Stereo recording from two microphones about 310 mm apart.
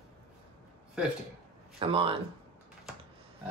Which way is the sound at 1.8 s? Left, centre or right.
Centre.